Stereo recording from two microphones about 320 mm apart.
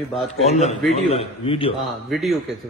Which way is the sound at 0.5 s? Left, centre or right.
Left.